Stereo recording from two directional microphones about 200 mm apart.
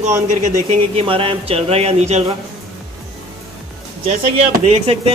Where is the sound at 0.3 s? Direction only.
35° right (ahead or behind).